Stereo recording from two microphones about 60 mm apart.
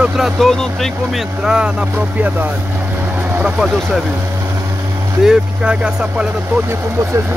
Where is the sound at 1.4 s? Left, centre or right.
Centre.